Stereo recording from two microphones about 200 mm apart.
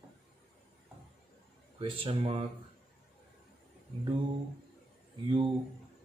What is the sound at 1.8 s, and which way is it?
Speech, 25° right (ahead or behind).